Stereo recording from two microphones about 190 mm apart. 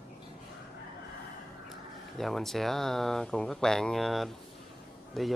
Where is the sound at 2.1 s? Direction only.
Centre (ahead or behind).